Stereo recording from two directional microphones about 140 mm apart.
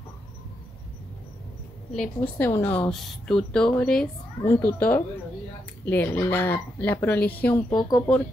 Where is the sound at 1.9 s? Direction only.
10° left (ahead or behind).